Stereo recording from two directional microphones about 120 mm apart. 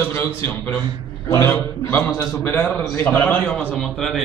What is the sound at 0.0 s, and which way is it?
A man's voice, 15° left (ahead or behind).